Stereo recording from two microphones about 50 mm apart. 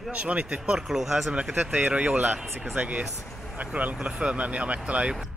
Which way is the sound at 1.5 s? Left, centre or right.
Right.